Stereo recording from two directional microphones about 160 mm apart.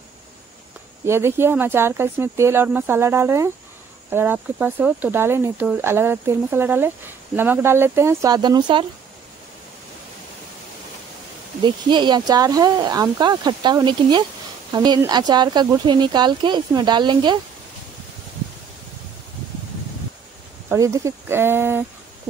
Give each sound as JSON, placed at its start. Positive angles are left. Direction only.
{"t": 1.0, "sound": "speech", "side_deg": -15}
{"t": 11.6, "sound": "speech", "side_deg": -30}
{"t": 20.6, "sound": "speech", "side_deg": -20}